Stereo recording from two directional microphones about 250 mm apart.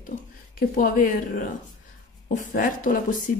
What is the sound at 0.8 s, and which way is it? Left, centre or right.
Speech, left.